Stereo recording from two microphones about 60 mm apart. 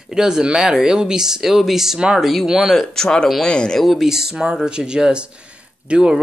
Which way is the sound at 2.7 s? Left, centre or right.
Centre.